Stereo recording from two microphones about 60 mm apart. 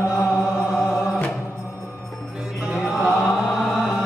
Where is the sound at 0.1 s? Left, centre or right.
Left.